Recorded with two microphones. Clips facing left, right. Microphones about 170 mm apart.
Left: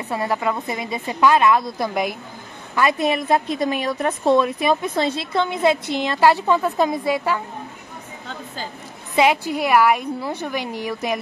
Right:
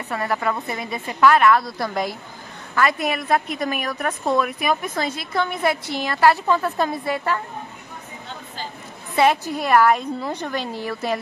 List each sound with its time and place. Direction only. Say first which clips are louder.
0.1 s a woman's voice: left 1 dB; 20° left (ahead or behind)
9.1 s a woman's voice: left 1 dB; 15° left (ahead or behind)